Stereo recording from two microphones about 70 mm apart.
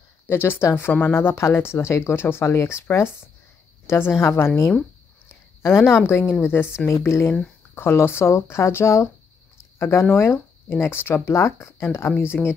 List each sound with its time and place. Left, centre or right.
0.3 s speech: left
5.6 s speech: left
12.3 s speech: centre